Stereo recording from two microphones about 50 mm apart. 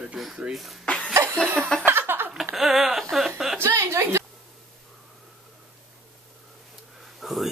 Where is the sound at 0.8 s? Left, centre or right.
Left.